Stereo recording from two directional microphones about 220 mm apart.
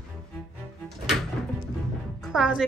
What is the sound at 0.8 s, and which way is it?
Music, centre (ahead or behind).